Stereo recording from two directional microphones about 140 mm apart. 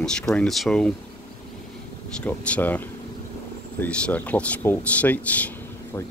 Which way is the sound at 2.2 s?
10° left (ahead or behind).